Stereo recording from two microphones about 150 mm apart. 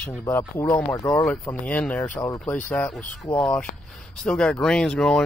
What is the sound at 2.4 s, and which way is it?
Speech, 10° left (ahead or behind).